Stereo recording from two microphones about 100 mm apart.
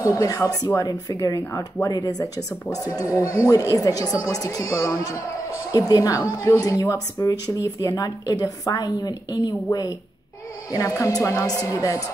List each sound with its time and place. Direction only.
0.1 s a woman's voice: 35° left (ahead or behind)